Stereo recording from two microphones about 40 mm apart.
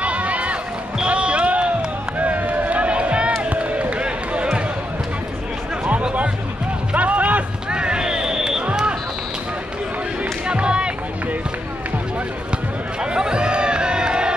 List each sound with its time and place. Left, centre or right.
0.0 s a sound: right
1.0 s basketball bounce: right
2.1 s run: right
3.4 s basketball bounce: right
6.9 s music: right
7.7 s a sound: right
10.4 s music: right
13.0 s crowd: right